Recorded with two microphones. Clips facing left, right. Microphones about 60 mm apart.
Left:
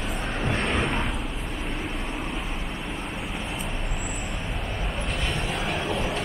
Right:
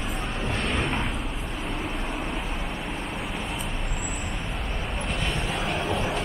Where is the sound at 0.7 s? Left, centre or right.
Centre.